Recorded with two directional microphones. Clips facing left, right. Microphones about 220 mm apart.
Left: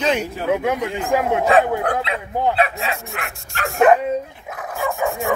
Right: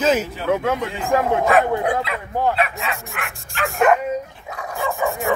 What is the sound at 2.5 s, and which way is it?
Speech, 35° left (ahead or behind).